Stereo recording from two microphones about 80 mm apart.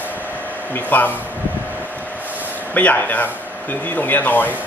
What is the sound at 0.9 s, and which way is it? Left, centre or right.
Speech, left.